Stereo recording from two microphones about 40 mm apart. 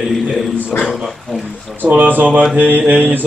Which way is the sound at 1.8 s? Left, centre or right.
Right.